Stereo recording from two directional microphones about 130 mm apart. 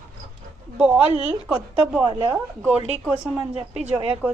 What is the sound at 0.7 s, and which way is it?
A woman's voice, 5° right (ahead or behind).